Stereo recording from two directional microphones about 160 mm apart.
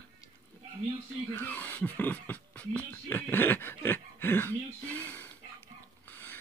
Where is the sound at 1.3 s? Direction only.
10° left (ahead or behind).